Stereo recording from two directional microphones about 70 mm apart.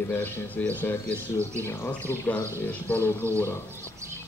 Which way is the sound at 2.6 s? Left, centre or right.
Left.